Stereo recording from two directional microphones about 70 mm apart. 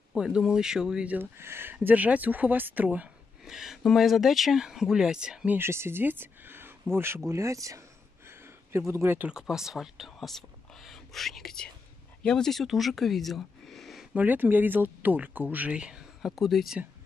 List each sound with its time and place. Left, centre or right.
0.1 s speech: centre
1.0 s speech: right
3.4 s speech: centre
5.6 s speech: right
7.2 s speech: right
8.7 s speech: right
9.3 s speech: centre
14.1 s speech: right; by 16.7 s centre